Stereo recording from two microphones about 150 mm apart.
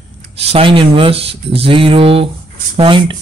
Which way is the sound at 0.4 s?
40° right (ahead or behind).